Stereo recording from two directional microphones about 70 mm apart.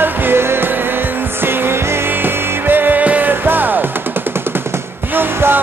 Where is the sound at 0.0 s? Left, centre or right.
Right.